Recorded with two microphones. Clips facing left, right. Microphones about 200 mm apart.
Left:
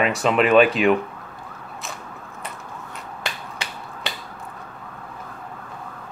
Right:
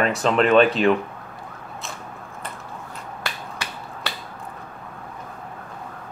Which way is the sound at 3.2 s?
20° left (ahead or behind).